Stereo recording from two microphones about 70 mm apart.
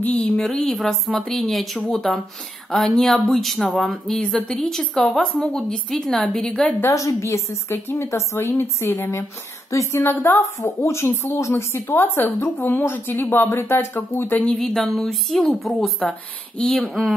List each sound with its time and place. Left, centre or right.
0.0 s a sound: centre
0.4 s a woman's voice: centre
6.9 s a woman's voice: left
9.7 s speech: left
11.7 s a woman's voice: left
14.4 s a woman's voice: centre